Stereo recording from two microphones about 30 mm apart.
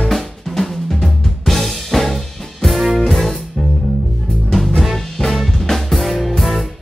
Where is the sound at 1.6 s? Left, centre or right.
Centre.